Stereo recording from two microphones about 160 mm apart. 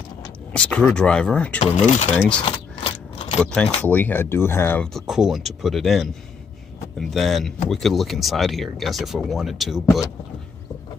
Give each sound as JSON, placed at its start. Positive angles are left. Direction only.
{"t": 0.6, "sound": "speech", "side_deg": 5}
{"t": 1.6, "sound": "speech", "side_deg": 45}
{"t": 2.1, "sound": "speech", "side_deg": 5}
{"t": 2.4, "sound": "keys jangling", "side_deg": 35}
{"t": 3.4, "sound": "speech", "side_deg": 5}